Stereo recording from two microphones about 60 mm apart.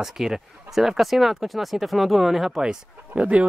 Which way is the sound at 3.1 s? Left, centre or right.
Centre.